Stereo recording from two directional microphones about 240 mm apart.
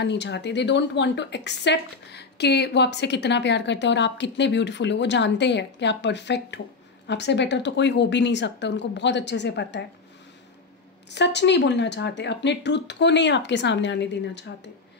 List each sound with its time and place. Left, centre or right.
0.0 s a woman's voice: left
11.1 s a woman's voice: left